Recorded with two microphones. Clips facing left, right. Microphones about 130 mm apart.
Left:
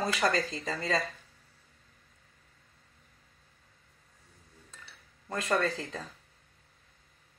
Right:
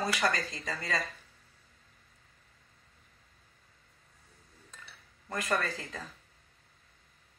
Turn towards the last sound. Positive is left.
turn(degrees=25)  # may be behind; listen again after turning